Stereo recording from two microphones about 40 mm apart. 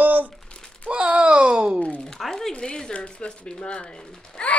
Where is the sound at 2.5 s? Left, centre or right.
Left.